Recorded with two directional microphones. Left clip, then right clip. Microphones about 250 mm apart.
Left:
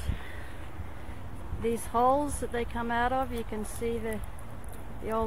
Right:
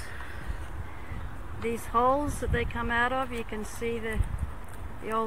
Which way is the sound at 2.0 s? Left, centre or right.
Centre.